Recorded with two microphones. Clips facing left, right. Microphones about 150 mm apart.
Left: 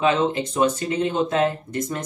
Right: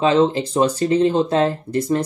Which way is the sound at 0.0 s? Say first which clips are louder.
Right 4 dB; 30° right (ahead or behind).